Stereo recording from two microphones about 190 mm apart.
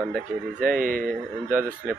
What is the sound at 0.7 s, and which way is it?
Speech, 50° right (ahead or behind).